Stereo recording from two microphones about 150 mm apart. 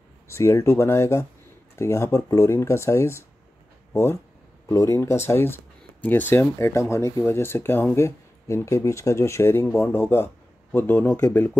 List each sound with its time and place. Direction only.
0.3 s speech: 20° left (ahead or behind)